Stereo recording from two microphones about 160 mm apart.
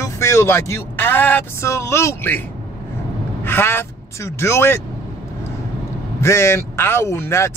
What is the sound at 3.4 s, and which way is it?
Speech, 15° left (ahead or behind).